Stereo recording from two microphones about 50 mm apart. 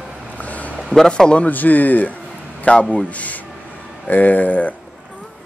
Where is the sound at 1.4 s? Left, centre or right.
Left.